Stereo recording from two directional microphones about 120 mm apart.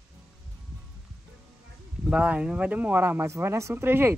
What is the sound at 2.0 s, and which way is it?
Speech, 10° right (ahead or behind).